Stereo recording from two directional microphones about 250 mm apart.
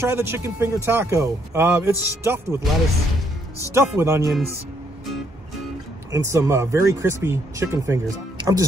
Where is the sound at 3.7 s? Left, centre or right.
Centre.